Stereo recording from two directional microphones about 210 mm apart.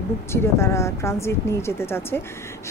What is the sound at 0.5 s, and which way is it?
Speech, 15° left (ahead or behind).